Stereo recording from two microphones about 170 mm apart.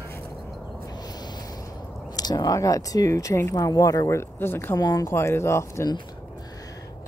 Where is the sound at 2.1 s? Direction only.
25° left (ahead or behind).